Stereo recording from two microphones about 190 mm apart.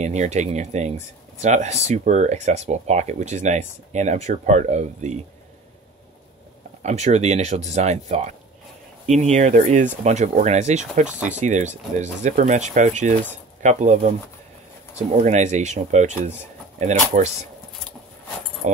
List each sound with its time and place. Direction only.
0.0 s speech: 35° right (ahead or behind)
6.8 s speech: 35° right (ahead or behind)
15.0 s speech: 35° right (ahead or behind)